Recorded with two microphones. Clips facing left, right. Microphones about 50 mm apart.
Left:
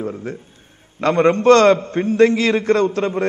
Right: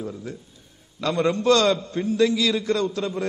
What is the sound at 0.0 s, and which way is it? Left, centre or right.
A man's voice, left.